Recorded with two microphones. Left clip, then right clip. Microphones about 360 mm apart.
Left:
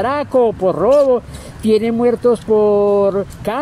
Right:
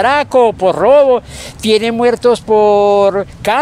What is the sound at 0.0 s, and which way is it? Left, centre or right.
Speech, right.